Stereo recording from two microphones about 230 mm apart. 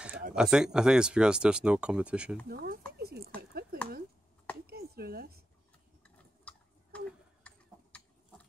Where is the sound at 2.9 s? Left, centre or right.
Right.